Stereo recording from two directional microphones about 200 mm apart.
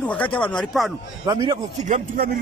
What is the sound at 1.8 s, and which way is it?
Speech, 40° right (ahead or behind).